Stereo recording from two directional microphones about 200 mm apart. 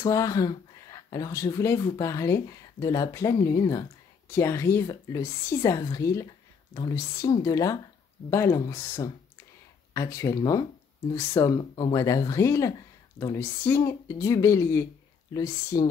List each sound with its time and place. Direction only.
0.0 s speech: 15° left (ahead or behind)